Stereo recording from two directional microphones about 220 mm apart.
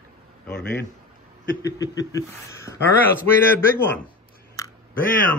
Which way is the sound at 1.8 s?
15° left (ahead or behind).